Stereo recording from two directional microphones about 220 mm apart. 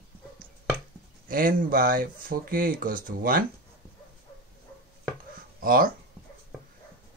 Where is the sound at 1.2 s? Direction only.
40° right (ahead or behind).